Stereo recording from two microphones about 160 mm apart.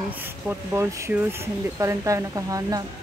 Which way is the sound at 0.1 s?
15° right (ahead or behind).